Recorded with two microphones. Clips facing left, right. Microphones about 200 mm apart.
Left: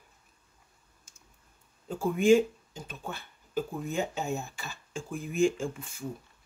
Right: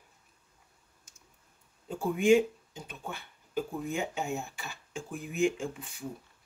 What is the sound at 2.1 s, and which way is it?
Speech, 15° right (ahead or behind).